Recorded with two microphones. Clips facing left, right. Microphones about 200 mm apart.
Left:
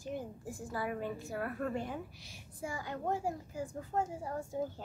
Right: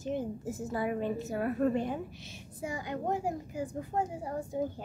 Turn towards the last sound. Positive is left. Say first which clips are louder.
# right 4 dB
turn(degrees=-15)  # may be behind; listen again after turning